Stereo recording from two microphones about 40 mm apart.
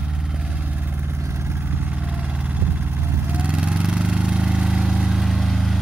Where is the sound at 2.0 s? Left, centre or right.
Right.